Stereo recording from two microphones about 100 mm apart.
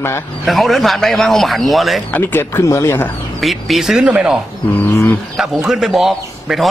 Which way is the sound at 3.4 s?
Centre (ahead or behind).